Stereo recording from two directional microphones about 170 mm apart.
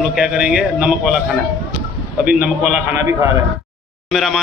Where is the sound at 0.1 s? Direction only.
5° right (ahead or behind).